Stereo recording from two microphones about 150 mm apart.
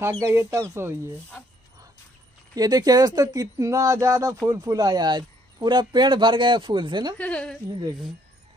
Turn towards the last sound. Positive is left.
turn(degrees=5)  # may be behind; listen again after turning